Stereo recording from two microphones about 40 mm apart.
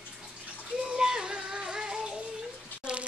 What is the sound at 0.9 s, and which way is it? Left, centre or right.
Music, centre.